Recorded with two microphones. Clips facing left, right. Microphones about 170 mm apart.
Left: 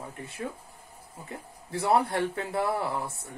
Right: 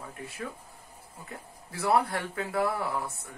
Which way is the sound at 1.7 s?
30° left (ahead or behind).